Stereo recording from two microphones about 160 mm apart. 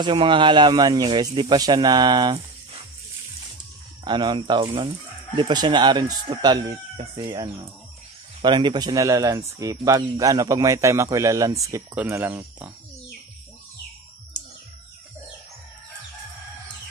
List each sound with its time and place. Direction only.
0.0 s speech: 30° right (ahead or behind)
4.0 s speech: 30° right (ahead or behind)